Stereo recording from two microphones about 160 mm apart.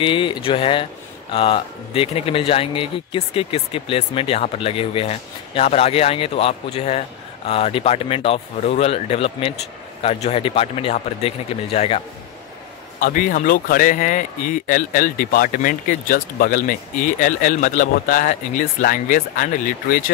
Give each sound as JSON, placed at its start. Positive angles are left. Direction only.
{"t": 0.0, "sound": "speech", "side_deg": 30}
{"t": 13.0, "sound": "speech", "side_deg": 55}